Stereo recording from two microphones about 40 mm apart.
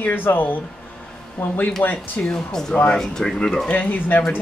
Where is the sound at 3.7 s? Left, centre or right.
Left.